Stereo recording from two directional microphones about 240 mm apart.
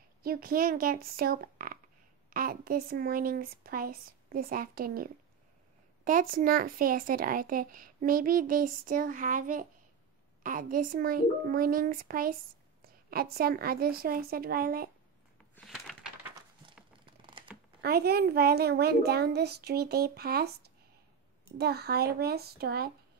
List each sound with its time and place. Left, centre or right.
0.2 s speech: right
15.5 s a sound: centre
17.0 s computer keyboard: right
17.8 s speech: right